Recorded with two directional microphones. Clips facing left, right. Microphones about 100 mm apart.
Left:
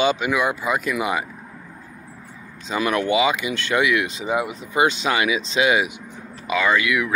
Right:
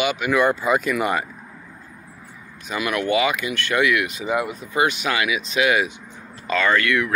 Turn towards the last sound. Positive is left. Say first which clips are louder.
# even
turn(degrees=10)  # may be behind; listen again after turning